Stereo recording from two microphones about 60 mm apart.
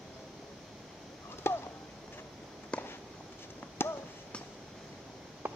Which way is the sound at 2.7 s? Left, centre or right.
Centre.